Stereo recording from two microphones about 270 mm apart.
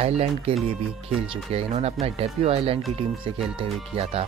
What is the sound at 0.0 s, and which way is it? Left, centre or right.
Speech, right.